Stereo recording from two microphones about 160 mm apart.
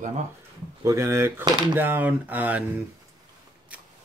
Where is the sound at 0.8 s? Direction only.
15° right (ahead or behind).